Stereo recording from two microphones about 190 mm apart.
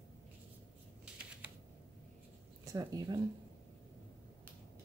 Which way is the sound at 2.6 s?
15° right (ahead or behind).